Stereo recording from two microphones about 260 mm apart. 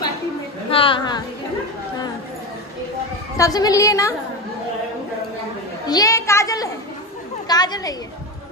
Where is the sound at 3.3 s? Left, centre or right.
Centre.